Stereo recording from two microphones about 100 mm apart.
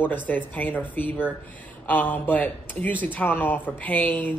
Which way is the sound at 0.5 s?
20° left (ahead or behind).